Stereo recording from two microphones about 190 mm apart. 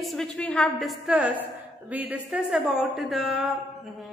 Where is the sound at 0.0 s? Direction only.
Centre (ahead or behind).